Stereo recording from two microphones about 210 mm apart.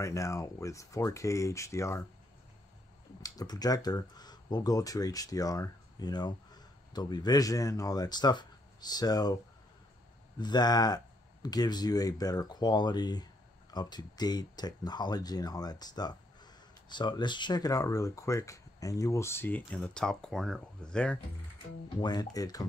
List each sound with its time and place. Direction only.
0.0 s speech: 15° left (ahead or behind)
3.2 s speech: 15° left (ahead or behind)
10.4 s speech: 20° left (ahead or behind); by 21.2 s 5° left (ahead or behind)
22.0 s speech: 20° left (ahead or behind)